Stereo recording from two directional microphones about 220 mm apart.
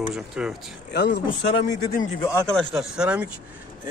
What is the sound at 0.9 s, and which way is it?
Speech, 50° left (ahead or behind).